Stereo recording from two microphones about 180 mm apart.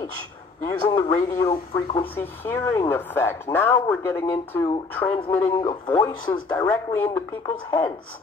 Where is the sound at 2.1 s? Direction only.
15° left (ahead or behind).